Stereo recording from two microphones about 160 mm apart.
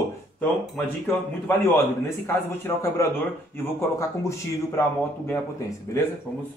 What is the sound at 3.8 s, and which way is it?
Speech, 20° left (ahead or behind).